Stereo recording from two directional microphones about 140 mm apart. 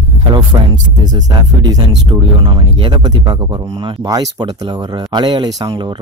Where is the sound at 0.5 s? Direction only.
25° right (ahead or behind).